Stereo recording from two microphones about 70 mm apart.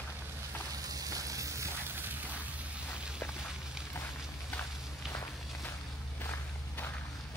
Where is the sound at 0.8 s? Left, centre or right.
Right.